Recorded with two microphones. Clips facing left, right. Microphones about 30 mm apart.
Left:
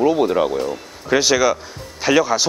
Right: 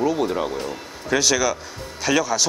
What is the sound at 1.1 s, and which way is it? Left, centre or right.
Speech, centre.